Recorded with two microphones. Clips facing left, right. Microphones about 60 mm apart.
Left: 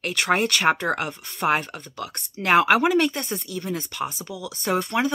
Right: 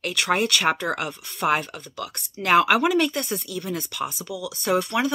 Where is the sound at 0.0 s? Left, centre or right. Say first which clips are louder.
Left 1 dB; left.